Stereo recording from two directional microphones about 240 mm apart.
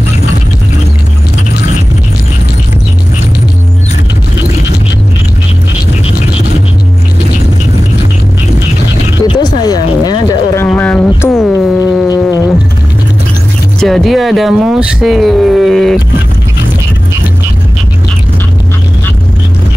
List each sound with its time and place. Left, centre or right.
9.3 s a sound: centre
12.1 s insect: centre
13.7 s speech: centre